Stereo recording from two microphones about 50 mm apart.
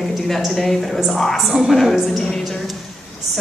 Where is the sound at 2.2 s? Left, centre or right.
Centre.